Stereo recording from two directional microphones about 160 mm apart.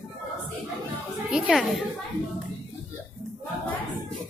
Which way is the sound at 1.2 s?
5° right (ahead or behind).